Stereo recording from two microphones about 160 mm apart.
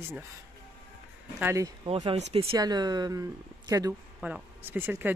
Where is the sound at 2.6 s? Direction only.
25° right (ahead or behind).